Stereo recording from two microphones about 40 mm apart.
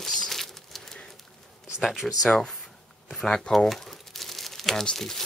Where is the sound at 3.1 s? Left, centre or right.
Centre.